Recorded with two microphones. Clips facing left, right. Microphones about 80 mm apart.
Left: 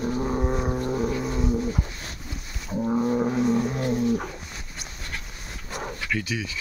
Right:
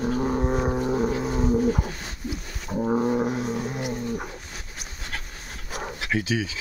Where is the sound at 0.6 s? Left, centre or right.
Centre.